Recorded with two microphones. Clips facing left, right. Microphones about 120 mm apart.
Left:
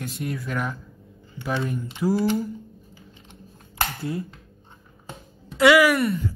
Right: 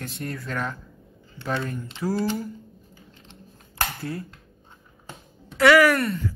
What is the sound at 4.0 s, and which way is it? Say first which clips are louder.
Speech: left 3 dB; 20° left (ahead or behind).